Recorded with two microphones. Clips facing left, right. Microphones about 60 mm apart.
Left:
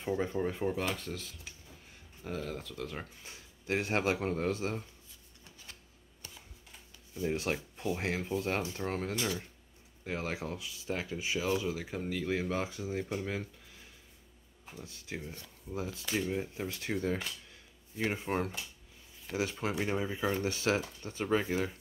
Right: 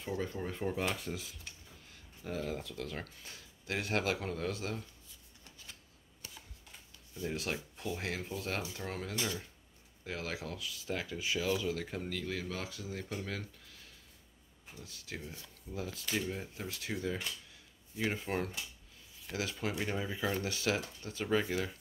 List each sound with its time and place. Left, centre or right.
0.0 s speech: left
0.3 s speech: centre
0.9 s speech: centre
3.0 s speech: left
7.2 s speech: left
11.5 s speech: centre
12.3 s speech: left
14.8 s speech: left
16.6 s speech: left
18.1 s speech: centre
20.4 s speech: left